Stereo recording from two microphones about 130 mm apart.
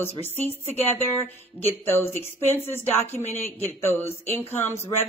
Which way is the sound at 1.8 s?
20° left (ahead or behind).